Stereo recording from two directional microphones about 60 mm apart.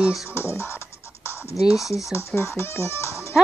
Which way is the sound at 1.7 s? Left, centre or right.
Centre.